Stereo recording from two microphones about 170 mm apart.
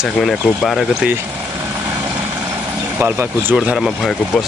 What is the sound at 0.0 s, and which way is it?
Speech, centre (ahead or behind).